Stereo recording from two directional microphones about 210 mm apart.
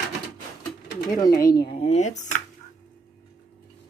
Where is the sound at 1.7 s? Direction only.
30° left (ahead or behind).